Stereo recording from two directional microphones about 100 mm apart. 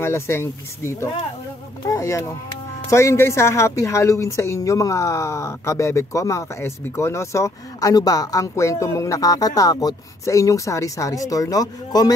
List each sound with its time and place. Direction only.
0.0 s a woman's voice: 25° left (ahead or behind)